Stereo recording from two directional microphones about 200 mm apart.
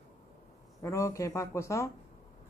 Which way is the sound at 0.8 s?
15° left (ahead or behind).